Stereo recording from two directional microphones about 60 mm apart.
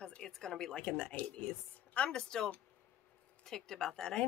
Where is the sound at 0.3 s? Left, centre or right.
Centre.